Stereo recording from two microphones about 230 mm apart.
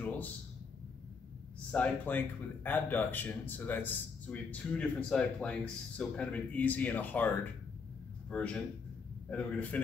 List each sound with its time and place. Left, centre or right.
1.7 s a man's voice: centre